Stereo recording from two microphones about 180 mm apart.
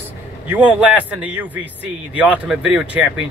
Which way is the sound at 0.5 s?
10° right (ahead or behind).